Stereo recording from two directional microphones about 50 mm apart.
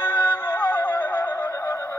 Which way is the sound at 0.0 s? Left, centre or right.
Left.